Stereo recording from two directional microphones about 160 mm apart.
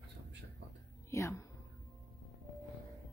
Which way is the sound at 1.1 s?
20° left (ahead or behind).